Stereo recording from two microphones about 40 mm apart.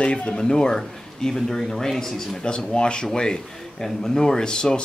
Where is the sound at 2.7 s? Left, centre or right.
Left.